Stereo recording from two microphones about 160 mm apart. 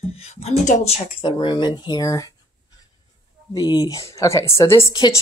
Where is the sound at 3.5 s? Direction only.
25° left (ahead or behind).